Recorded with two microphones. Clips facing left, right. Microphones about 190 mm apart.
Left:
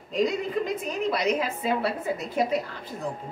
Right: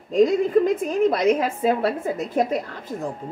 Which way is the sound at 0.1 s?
50° right (ahead or behind).